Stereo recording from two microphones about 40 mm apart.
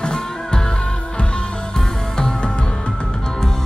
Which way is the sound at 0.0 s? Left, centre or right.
Centre.